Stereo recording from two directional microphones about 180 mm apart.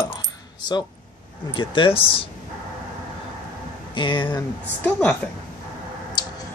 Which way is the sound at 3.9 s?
25° left (ahead or behind).